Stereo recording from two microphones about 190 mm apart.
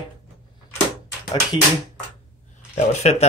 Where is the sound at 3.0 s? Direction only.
35° left (ahead or behind).